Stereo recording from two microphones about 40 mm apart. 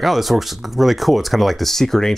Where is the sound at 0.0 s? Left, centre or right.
Centre.